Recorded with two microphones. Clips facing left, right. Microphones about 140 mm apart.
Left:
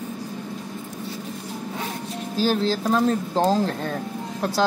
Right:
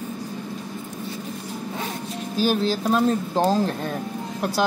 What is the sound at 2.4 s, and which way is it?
Speech, 15° right (ahead or behind).